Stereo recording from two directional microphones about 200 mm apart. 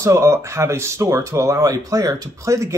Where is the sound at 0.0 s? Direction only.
15° right (ahead or behind).